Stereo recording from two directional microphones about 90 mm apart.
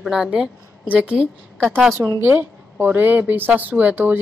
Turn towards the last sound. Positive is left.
turn(degrees=-20)  # may be behind; listen again after turning